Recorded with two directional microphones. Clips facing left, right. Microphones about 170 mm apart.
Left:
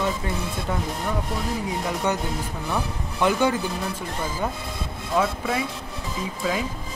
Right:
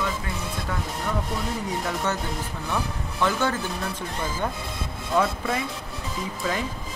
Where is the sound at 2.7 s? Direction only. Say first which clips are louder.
Even; 15° left (ahead or behind).